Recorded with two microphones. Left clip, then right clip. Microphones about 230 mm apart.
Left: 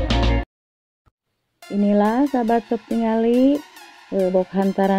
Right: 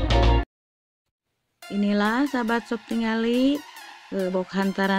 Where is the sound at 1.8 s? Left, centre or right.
Centre.